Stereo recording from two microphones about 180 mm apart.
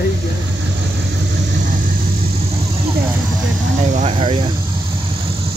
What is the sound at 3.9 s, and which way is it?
Speech, 30° right (ahead or behind).